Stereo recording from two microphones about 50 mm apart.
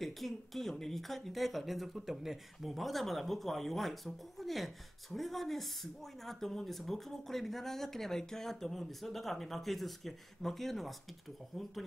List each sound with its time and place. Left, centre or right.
0.0 s speech: centre